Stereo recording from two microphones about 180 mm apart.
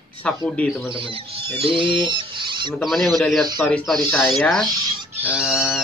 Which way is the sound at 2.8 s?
Centre (ahead or behind).